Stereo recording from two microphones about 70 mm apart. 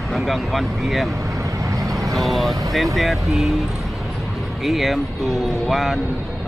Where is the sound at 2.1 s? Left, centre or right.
Centre.